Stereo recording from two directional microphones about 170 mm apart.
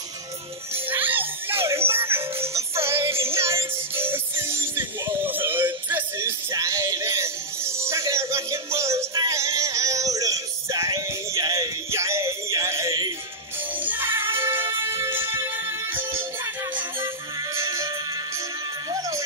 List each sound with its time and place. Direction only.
0.8 s music: 10° right (ahead or behind)
17.6 s music: 15° right (ahead or behind)